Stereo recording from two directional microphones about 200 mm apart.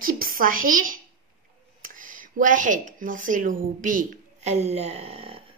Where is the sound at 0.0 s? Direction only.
45° right (ahead or behind); by 5.4 s 30° right (ahead or behind).